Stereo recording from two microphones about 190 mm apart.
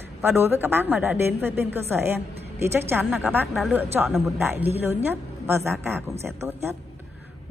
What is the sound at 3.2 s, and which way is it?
A woman's voice, 10° right (ahead or behind).